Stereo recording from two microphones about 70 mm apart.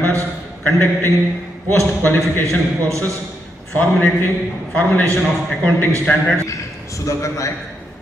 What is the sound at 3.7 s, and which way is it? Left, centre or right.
Speech, left.